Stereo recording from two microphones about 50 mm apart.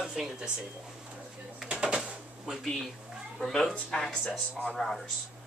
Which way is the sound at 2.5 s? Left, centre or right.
Centre.